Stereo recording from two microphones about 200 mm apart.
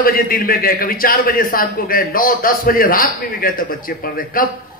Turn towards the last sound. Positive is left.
turn(degrees=45)  # may be behind; listen again after turning